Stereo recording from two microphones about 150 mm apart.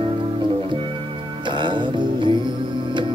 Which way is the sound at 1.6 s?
30° right (ahead or behind).